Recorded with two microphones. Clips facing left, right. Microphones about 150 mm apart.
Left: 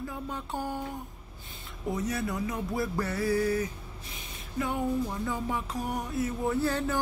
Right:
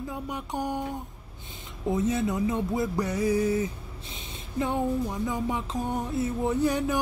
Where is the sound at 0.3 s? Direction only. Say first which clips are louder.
Right 4 dB; 15° right (ahead or behind).